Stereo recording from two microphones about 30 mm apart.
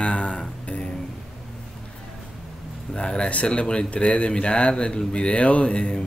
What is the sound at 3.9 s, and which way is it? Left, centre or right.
Speech, left.